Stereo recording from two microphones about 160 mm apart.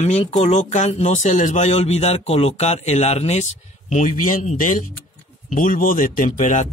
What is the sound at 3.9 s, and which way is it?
Speech, 55° left (ahead or behind).